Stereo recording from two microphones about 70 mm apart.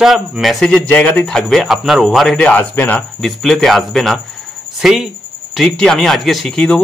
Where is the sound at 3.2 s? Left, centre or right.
Centre.